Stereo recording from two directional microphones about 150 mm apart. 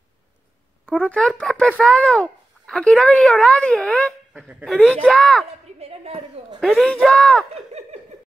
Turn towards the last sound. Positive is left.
turn(degrees=-45)  # may be behind; listen again after turning